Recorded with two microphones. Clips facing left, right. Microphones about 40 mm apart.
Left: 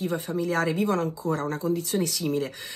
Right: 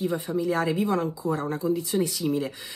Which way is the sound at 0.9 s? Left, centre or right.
Right.